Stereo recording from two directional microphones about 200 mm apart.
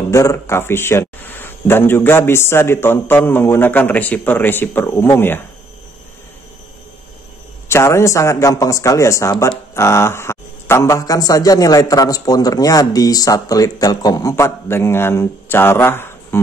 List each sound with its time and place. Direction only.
0.1 s a man's voice: 15° left (ahead or behind)
7.6 s a man's voice: 15° left (ahead or behind)